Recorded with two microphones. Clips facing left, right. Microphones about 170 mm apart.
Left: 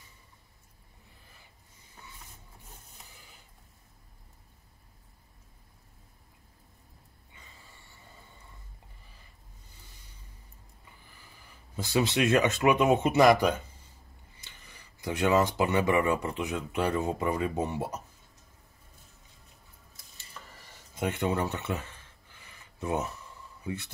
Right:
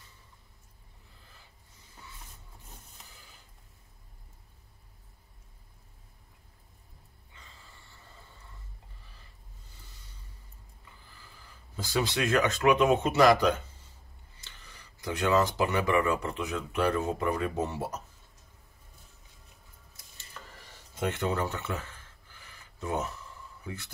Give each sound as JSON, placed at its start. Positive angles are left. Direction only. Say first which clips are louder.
{"t": 11.7, "sound": "speech", "louder": "left 3 dB", "side_deg": 25}
{"t": 15.0, "sound": "speech", "louder": "left 1 dB", "side_deg": 20}
{"t": 21.0, "sound": "speech", "louder": "left 1 dB", "side_deg": 15}